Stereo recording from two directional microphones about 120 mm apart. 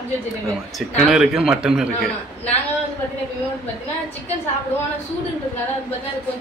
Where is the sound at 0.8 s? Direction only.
5° right (ahead or behind).